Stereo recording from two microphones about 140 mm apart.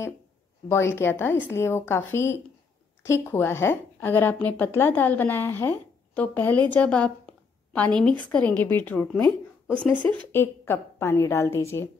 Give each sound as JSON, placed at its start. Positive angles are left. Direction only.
{"t": 0.7, "sound": "a woman's voice", "side_deg": 20}
{"t": 10.3, "sound": "a woman's voice", "side_deg": 15}